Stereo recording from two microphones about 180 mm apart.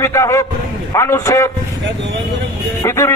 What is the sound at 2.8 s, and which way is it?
Speech, 15° left (ahead or behind).